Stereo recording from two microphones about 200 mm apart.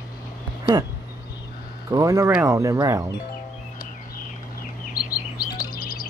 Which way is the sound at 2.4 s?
15° right (ahead or behind).